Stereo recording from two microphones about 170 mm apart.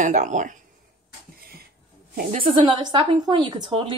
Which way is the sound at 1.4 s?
65° right (ahead or behind).